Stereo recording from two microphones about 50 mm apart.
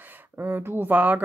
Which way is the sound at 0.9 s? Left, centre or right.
Right.